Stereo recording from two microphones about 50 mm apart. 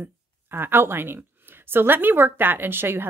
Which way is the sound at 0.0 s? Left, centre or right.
Right.